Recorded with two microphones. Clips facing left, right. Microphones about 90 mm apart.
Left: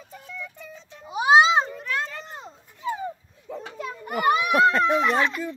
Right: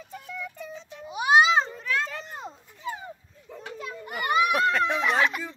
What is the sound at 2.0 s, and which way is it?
Children playing, 10° right (ahead or behind).